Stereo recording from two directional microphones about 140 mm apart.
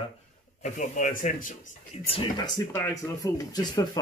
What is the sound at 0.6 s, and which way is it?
Speech, 60° left (ahead or behind).